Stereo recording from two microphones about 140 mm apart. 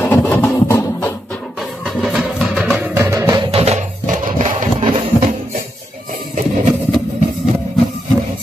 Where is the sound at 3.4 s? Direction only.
45° right (ahead or behind).